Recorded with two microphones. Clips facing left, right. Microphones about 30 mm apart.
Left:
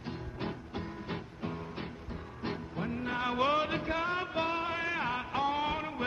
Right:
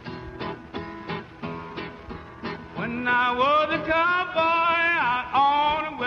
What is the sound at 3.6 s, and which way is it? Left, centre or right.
Music, right.